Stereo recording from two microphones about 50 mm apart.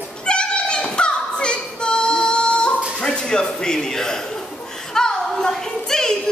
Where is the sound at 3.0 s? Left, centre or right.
Centre.